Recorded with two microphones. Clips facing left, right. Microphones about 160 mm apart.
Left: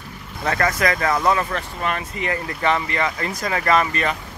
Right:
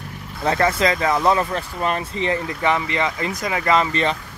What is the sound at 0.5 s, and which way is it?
Speech, 25° right (ahead or behind).